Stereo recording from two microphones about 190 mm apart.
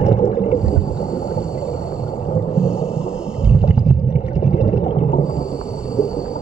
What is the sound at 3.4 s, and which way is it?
Boat, 5° right (ahead or behind).